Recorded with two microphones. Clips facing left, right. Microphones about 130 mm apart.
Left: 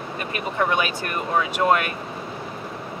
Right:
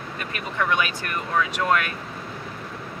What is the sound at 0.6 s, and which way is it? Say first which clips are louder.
Speech: left 1 dB; 30° left (ahead or behind).